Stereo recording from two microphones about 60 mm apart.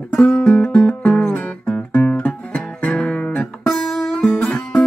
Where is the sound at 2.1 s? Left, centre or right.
Left.